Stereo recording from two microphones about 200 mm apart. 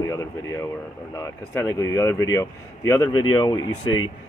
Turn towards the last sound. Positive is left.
turn(degrees=20)  # may be behind; listen again after turning